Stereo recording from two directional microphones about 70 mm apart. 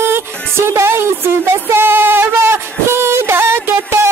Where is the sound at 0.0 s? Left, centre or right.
Right.